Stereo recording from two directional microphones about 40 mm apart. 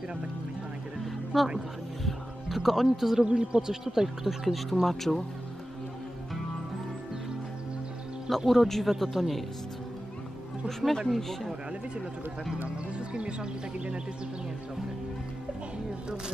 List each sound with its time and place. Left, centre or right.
1.3 s speech: centre
2.0 s music: centre
3.3 s speech: right; by 4.6 s centre
4.6 s speech: centre
8.5 s speech: centre
10.9 s speech: centre
13.1 s speech: right